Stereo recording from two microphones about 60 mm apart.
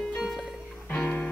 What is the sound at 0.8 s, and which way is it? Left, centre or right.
Music, left.